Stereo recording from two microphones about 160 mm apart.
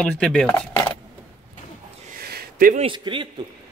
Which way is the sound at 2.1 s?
75° right (ahead or behind).